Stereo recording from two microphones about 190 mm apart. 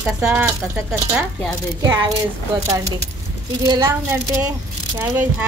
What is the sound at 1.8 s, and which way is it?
Speech, 20° right (ahead or behind).